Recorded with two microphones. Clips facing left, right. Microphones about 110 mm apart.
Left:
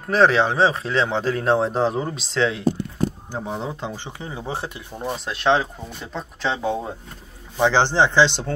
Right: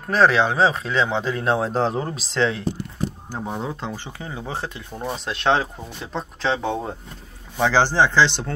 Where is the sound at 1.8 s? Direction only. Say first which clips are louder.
Left 1 dB; 5° left (ahead or behind).